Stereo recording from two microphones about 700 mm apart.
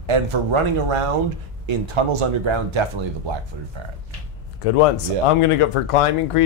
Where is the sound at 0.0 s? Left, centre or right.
Right.